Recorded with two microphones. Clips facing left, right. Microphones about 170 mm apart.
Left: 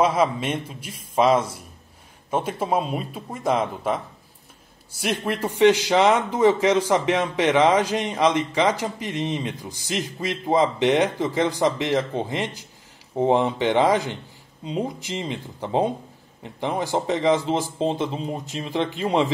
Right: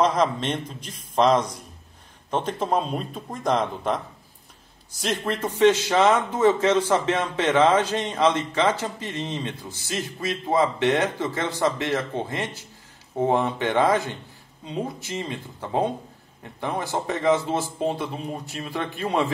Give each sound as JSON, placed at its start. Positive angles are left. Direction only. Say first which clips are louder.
{"t": 0.0, "sound": "speech", "louder": "left 1 dB", "side_deg": 10}